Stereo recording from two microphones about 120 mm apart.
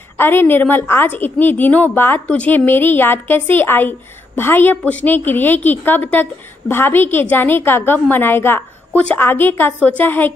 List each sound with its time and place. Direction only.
0.2 s a woman's voice: 15° left (ahead or behind)